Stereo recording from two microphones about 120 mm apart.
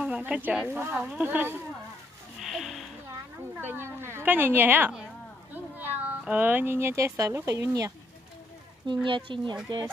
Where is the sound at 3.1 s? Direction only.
20° right (ahead or behind).